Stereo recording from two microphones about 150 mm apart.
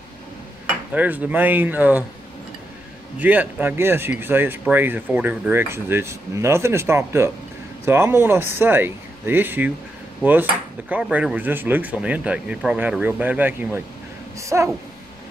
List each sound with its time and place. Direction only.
0.9 s speech: 10° right (ahead or behind)
3.2 s speech: 10° right (ahead or behind)
10.9 s speech: 10° right (ahead or behind)